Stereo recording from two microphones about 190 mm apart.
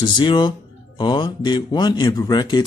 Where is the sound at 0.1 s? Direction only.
25° left (ahead or behind).